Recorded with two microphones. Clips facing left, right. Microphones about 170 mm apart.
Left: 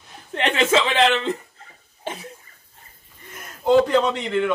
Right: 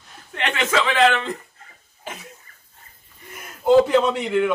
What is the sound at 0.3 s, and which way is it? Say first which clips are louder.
Speech: left 4 dB; 30° left (ahead or behind).